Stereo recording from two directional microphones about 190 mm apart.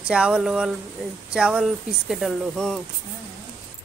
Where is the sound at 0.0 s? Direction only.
5° right (ahead or behind).